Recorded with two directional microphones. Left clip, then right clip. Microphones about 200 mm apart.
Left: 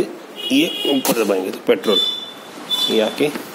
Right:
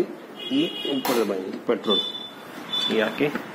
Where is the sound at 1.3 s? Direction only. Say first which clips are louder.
Left 8 dB; 50° left (ahead or behind).